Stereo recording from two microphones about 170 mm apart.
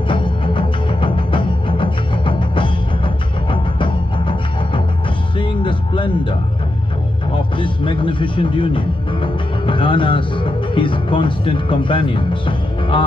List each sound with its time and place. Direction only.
0.1 s music: 30° left (ahead or behind)
7.5 s speech: 30° left (ahead or behind)